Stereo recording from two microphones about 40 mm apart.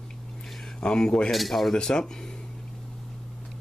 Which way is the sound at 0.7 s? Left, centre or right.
Left.